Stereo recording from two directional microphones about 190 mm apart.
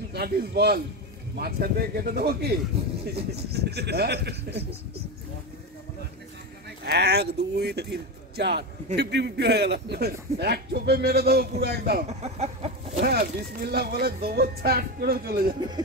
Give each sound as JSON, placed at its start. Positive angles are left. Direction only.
{"t": 0.1, "sound": "a man's voice", "side_deg": -55}
{"t": 6.8, "sound": "a man's voice", "side_deg": -60}
{"t": 12.1, "sound": "a sound", "side_deg": -35}
{"t": 13.0, "sound": "a man's voice", "side_deg": -55}